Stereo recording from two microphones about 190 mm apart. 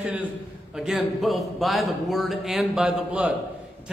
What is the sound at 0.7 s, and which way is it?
A man's voice, 5° right (ahead or behind).